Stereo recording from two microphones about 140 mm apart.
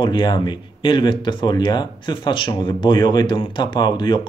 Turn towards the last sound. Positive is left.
turn(degrees=30)  # may be behind; listen again after turning